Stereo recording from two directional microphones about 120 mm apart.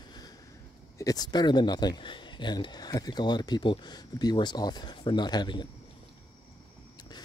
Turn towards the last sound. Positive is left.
turn(degrees=40)  # may be behind; listen again after turning